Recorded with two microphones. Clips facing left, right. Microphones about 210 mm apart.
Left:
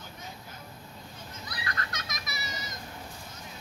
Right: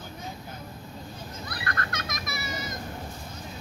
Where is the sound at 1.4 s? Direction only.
55° right (ahead or behind).